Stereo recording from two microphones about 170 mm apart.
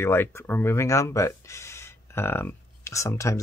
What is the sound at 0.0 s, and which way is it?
Speech, 15° left (ahead or behind).